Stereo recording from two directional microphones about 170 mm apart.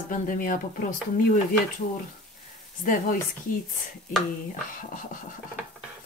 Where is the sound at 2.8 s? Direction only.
55° left (ahead or behind).